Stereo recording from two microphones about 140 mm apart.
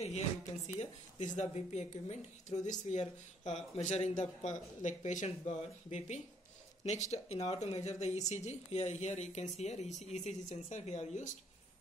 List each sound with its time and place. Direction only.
0.7 s speech: 60° left (ahead or behind)